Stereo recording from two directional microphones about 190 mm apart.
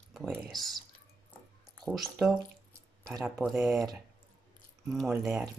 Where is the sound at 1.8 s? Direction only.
Centre (ahead or behind).